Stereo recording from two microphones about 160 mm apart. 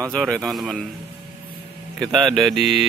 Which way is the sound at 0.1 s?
5° left (ahead or behind).